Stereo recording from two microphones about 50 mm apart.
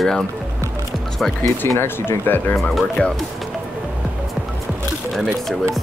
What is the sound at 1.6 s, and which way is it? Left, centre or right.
Speech, left.